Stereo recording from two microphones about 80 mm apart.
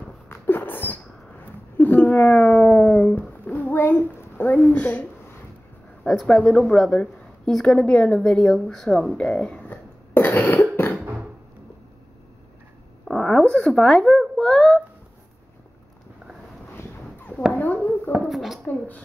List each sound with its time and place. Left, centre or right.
0.3 s a sound: left
2.6 s a sound: centre
6.2 s a woman's voice: centre
6.5 s a woman's voice: centre
9.7 s cough: left
10.4 s cough: centre
13.0 s a sound: centre
17.5 s a child's voice: left
18.2 s speech: centre